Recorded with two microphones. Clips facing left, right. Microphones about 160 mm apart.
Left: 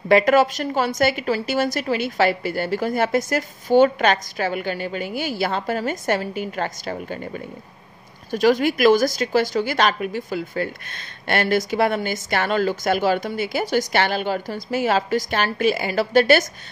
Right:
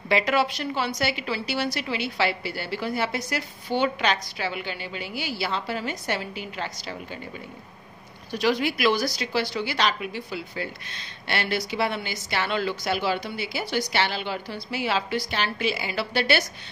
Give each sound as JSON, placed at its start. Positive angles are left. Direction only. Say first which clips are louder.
{"t": 0.1, "sound": "a woman's voice", "louder": "left 8 dB", "side_deg": 45}
{"t": 8.3, "sound": "a woman's voice", "louder": "left 6 dB", "side_deg": 45}